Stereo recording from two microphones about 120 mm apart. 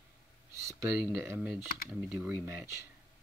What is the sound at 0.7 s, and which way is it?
Speech, 25° right (ahead or behind).